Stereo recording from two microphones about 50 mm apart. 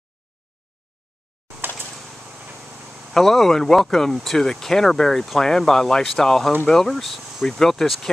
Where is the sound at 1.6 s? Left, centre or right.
Right.